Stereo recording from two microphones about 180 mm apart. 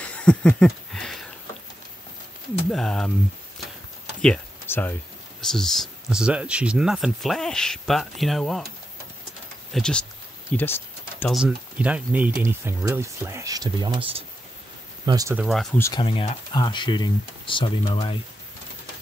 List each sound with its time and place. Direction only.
0.0 s a sound: 5° left (ahead or behind)
2.7 s speech: centre (ahead or behind)
4.2 s a sound: 10° left (ahead or behind)
5.4 s speech: centre (ahead or behind)
9.7 s speech: 5° left (ahead or behind)
10.5 s a sound: 10° left (ahead or behind)
11.2 s speech: 5° right (ahead or behind); by 15.3 s 20° right (ahead or behind)
15.3 s speech: centre (ahead or behind)
15.8 s speech: 25° left (ahead or behind)